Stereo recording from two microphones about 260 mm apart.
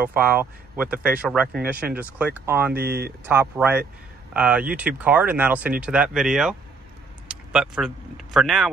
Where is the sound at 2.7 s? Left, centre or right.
Right.